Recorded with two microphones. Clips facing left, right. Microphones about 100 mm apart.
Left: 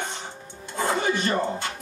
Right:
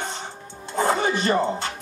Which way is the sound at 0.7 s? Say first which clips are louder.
Right 3 dB; 30° right (ahead or behind).